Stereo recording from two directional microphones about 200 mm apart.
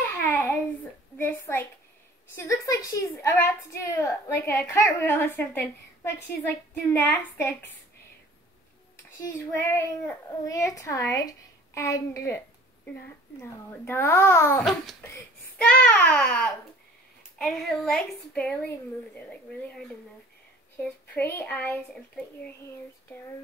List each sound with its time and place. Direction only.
0.2 s babbling: 10° left (ahead or behind)
1.1 s a woman's voice: 10° left (ahead or behind)
9.6 s a woman's voice: 10° left (ahead or behind)
13.4 s a woman's voice: 10° left (ahead or behind)
14.6 s a woman's voice: centre (ahead or behind)
20.8 s a woman's voice: 10° left (ahead or behind)